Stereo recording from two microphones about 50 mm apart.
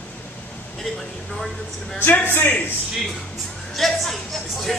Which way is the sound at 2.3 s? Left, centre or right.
Left.